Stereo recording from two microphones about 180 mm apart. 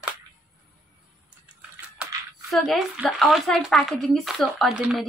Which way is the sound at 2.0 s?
Centre (ahead or behind).